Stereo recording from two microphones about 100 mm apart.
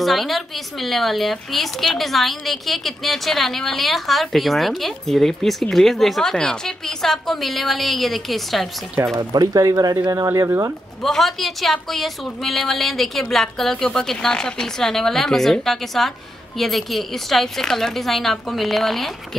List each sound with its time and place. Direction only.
0.0 s a woman's voice: centre (ahead or behind)
9.1 s speech: 40° right (ahead or behind)
11.0 s a woman's voice: 5° left (ahead or behind)